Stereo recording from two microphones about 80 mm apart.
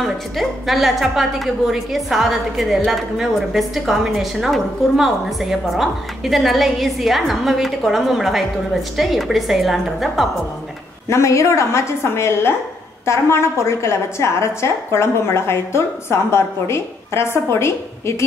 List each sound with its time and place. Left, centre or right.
0.0 s a woman's voice: centre
11.1 s a woman's voice: left